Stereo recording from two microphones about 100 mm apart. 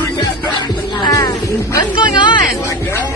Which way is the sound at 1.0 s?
40° left (ahead or behind).